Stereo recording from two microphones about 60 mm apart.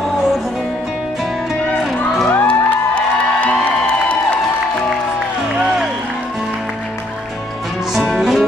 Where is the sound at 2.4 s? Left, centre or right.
Left.